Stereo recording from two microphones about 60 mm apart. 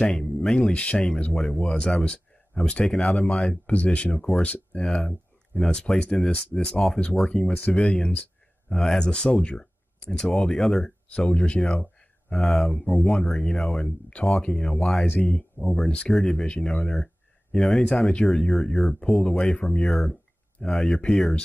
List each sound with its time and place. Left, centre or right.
0.0 s speech: centre
0.6 s speech: centre
3.6 s speech: left
4.9 s speech: centre
11.1 s speech: centre
11.7 s speech: centre
15.0 s speech: centre
16.1 s speech: centre
19.8 s speech: centre